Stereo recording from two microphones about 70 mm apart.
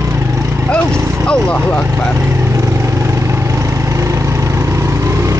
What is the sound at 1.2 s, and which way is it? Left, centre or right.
Speech, centre.